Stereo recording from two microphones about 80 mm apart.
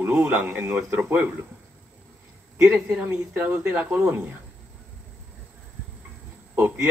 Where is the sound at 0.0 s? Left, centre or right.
Right.